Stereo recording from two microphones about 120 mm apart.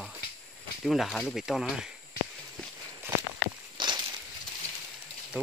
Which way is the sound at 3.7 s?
40° right (ahead or behind).